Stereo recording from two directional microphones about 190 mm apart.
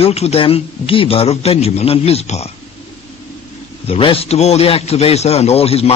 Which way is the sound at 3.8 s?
30° left (ahead or behind).